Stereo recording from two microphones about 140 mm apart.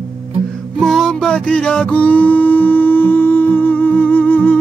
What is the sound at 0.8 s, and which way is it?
Music, centre (ahead or behind).